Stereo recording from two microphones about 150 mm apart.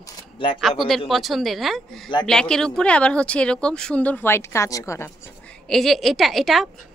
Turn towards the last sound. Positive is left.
turn(degrees=0)  # may be behind; listen again after turning